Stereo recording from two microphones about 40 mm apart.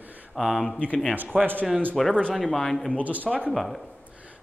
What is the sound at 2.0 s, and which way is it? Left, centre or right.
Speech, centre.